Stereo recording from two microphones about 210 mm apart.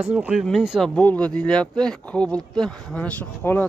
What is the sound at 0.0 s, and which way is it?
Speech, 5° right (ahead or behind).